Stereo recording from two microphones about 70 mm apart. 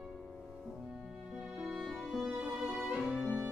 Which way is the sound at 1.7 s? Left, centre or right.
Centre.